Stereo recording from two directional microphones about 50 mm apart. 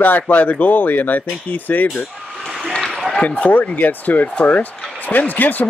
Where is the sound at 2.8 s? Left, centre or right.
Centre.